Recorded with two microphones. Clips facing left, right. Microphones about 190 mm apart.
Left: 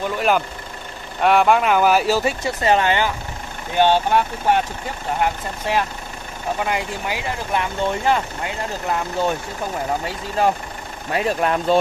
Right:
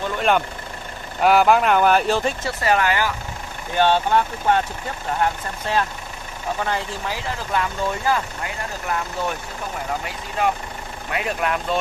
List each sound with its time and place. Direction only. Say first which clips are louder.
1.2 s speech: even; centre (ahead or behind)
2.6 s speech: left 2 dB; 25° left (ahead or behind)
3.7 s speech: left 1 dB; 15° left (ahead or behind)
11.1 s speech: left 4 dB; 35° left (ahead or behind)